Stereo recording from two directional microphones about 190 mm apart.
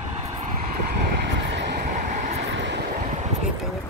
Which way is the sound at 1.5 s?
65° right (ahead or behind).